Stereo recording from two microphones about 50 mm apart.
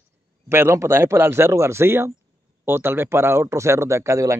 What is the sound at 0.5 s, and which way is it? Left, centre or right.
A man's voice, right.